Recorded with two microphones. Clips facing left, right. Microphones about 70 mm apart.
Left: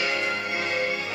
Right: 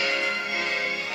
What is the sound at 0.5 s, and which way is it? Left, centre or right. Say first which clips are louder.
Music: left 1 dB; centre.